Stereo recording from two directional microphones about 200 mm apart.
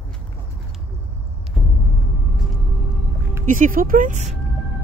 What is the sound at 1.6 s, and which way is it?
Vehicle, centre (ahead or behind).